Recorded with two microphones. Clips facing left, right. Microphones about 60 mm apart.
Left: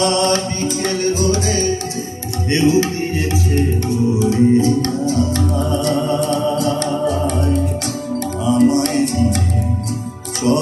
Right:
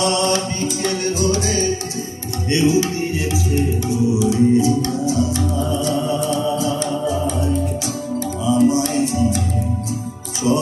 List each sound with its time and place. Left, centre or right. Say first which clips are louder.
0.0 s music: left 2 dB; left
2.5 s tabla: left 2 dB; left
4.1 s music: left 2 dB; left